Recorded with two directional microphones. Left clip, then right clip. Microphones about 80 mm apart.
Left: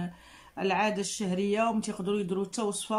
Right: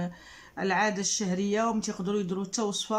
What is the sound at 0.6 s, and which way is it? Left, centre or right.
Speech, left.